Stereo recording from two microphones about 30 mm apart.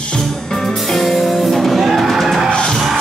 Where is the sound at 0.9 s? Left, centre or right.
Centre.